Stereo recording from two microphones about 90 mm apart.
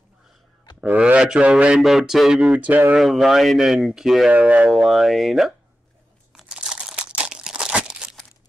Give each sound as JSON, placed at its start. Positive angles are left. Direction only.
{"t": 0.7, "sound": "speech", "side_deg": -15}
{"t": 2.6, "sound": "speech", "side_deg": -20}
{"t": 3.0, "sound": "speech", "side_deg": 0}
{"t": 4.3, "sound": "speech", "side_deg": -15}
{"t": 4.6, "sound": "speech", "side_deg": 0}
{"t": 6.3, "sound": "crumpling", "side_deg": -5}